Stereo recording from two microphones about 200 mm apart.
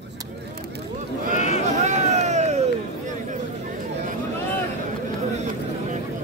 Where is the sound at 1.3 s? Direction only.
35° left (ahead or behind).